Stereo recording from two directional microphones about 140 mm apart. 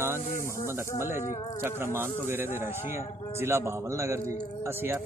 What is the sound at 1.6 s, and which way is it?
A man's voice, 15° right (ahead or behind).